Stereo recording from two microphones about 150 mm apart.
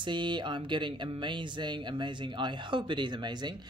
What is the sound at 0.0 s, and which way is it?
Speech, 30° right (ahead or behind).